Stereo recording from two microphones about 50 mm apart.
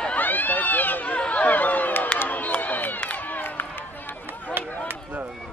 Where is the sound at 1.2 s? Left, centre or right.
Left.